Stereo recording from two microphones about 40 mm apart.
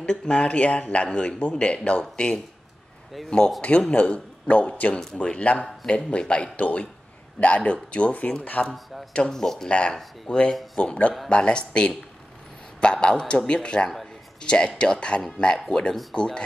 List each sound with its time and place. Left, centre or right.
0.0 s a man's voice: left
3.9 s a man's voice: left
9.3 s speech: centre
9.7 s a man's voice: left
10.8 s a man's voice: left; by 16.2 s centre
16.2 s a man's voice: left